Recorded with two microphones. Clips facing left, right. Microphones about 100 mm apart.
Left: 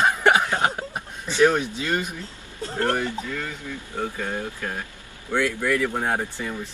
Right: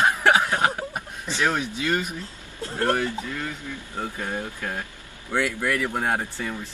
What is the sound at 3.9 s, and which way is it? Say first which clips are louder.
Speech: left 2 dB; 20° right (ahead or behind).